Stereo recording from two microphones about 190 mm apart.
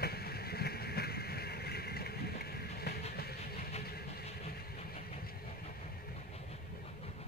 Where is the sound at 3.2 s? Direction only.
55° left (ahead or behind).